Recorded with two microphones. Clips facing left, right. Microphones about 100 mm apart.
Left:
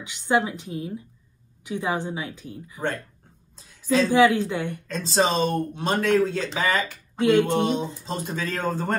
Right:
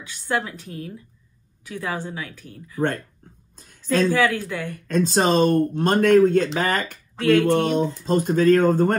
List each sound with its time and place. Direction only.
0.0 s speech: 20° left (ahead or behind)
4.1 s speech: 20° left (ahead or behind)
4.8 s speech: 50° right (ahead or behind)
7.2 s speech: 20° left (ahead or behind)
8.0 s speech: 50° right (ahead or behind)